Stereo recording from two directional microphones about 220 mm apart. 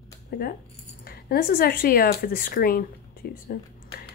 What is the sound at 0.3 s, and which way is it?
Speech, 45° left (ahead or behind).